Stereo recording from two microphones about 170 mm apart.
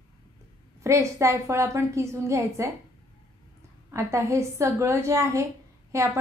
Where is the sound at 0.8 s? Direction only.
15° right (ahead or behind).